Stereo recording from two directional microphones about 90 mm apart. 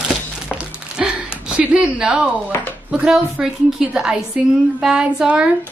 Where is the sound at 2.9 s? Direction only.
5° right (ahead or behind).